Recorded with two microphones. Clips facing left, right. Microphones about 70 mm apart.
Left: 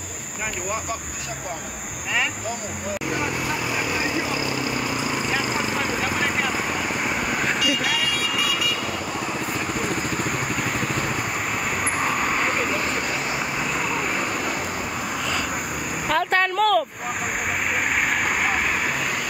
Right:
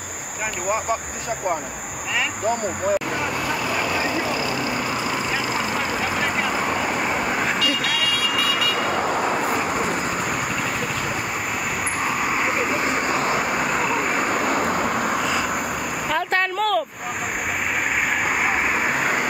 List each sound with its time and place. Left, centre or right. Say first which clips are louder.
8.4 s vehicle: right 3 dB; right
8.9 s vehicle: right 6 dB; right
12.0 s vehicle: right 1 dB; centre; by 14.9 s right
16.1 s a sound: left 2 dB; centre